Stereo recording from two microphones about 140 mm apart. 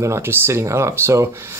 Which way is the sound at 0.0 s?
20° right (ahead or behind).